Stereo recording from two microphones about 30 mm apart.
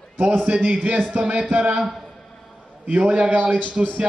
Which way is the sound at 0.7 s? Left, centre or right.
Right.